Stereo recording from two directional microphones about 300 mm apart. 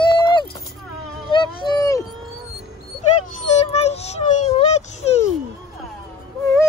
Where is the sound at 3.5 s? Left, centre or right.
Left.